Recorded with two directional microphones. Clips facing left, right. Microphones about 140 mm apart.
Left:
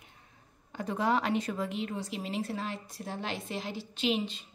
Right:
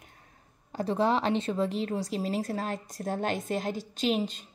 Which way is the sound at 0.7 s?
35° right (ahead or behind).